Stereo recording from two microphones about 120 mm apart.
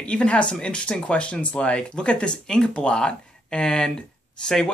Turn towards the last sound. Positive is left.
turn(degrees=5)  # may be behind; listen again after turning